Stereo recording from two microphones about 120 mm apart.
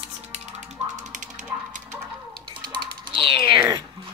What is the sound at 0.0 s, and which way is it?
Music, 65° right (ahead or behind).